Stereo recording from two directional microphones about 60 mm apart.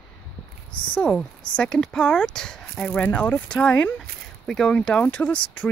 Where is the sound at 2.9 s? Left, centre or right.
Left.